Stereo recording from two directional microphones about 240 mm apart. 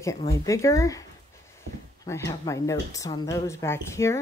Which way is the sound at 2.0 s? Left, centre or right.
Centre.